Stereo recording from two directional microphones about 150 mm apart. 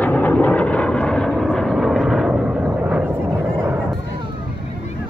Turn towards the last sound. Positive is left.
turn(degrees=-15)  # may be behind; listen again after turning